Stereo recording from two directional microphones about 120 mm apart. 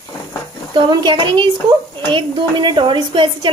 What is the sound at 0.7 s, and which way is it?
A woman's voice, 40° right (ahead or behind).